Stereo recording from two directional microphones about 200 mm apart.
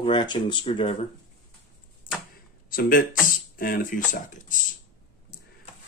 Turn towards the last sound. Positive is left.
turn(degrees=40)  # may be behind; listen again after turning